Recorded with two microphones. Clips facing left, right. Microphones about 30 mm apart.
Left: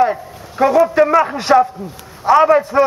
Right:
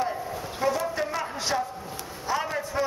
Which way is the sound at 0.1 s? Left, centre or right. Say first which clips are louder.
Left 6 dB; left.